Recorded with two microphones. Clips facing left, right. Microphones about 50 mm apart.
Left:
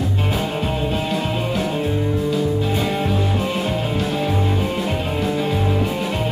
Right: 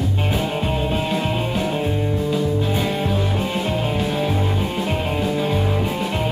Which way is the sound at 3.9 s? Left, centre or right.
Centre.